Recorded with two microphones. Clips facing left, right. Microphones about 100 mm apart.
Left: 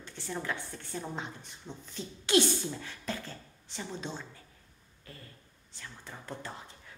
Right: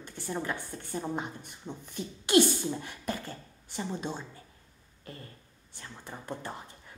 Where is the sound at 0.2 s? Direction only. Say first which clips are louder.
Right 4 dB; 50° right (ahead or behind).